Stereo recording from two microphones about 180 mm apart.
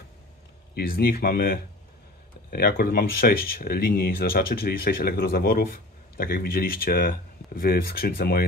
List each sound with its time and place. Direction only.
0.7 s speech: 55° left (ahead or behind)